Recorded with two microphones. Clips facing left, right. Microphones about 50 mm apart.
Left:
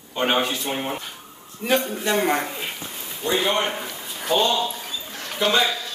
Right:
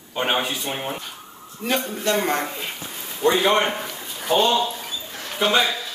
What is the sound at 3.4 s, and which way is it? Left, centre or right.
Speech, right.